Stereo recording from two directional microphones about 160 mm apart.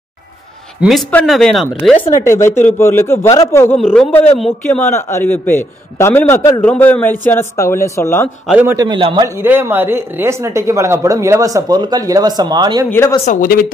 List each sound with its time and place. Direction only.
0.7 s a man's voice: centre (ahead or behind)
2.2 s a man's voice: 15° left (ahead or behind)
3.7 s a man's voice: centre (ahead or behind); by 8.3 s 15° left (ahead or behind)
8.5 s a man's voice: 10° right (ahead or behind)
8.7 s speech: 30° right (ahead or behind)
9.3 s speech: 15° right (ahead or behind)
13.2 s speech: 55° left (ahead or behind)